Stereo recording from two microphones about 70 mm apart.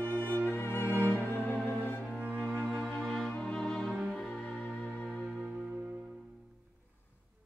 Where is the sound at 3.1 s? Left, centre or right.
Centre.